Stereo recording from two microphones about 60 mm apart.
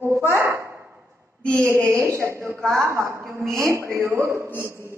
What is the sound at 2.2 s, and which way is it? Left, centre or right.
A woman's voice, right.